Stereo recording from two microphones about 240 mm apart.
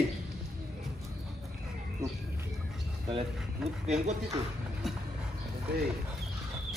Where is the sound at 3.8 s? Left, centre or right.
Right.